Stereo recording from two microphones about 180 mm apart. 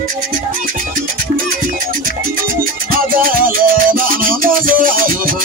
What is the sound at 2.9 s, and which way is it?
Music, 50° right (ahead or behind).